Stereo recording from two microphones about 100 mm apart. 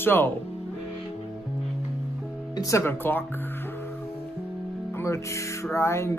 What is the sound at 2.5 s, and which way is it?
Speech, 35° left (ahead or behind).